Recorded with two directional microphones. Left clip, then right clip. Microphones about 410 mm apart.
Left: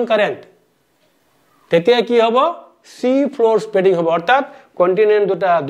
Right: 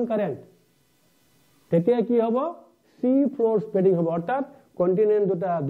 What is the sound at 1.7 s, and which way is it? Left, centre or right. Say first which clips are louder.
A man's voice: left 8 dB; centre.